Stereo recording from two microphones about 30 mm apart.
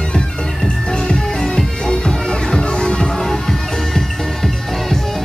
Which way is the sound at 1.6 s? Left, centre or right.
Left.